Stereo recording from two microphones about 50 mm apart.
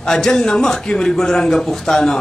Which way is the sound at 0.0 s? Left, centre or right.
Centre.